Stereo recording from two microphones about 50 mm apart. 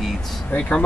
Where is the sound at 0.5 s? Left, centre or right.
Left.